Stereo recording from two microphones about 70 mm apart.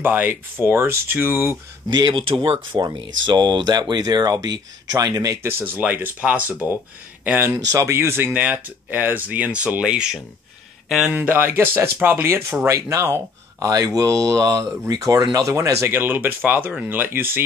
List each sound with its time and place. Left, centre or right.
0.0 s speech: right
1.9 s speech: right
2.8 s speech: right
5.4 s speech: right
7.7 s speech: right; by 11.1 s centre
11.1 s speech: right
12.6 s speech: right
15.9 s speech: right